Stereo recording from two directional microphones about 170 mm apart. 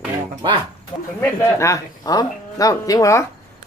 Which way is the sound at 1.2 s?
15° left (ahead or behind).